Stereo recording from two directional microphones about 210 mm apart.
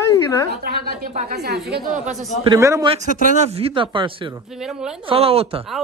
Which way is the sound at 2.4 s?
15° right (ahead or behind).